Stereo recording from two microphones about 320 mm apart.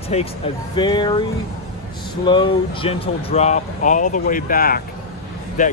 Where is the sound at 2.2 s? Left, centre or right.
Centre.